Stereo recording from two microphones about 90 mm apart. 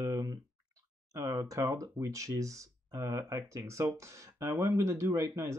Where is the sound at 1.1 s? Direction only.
40° right (ahead or behind).